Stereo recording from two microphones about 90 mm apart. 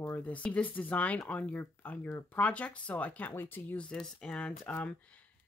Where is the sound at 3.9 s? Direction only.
10° left (ahead or behind).